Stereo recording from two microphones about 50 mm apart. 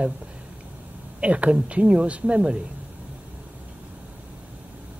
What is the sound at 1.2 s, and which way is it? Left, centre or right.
Speech, right.